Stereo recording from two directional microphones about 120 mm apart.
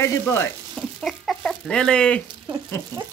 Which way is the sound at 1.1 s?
5° left (ahead or behind).